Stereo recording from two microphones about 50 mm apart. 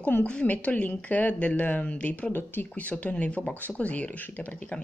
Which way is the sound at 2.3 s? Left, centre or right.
Left.